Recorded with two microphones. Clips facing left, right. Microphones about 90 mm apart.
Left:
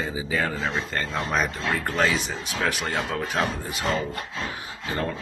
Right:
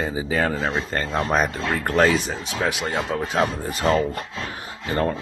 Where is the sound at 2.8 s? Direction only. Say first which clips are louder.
Right 3 dB; 20° right (ahead or behind).